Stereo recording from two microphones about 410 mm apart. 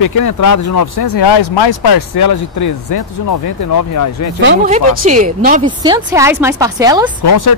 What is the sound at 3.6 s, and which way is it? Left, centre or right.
Speech, left.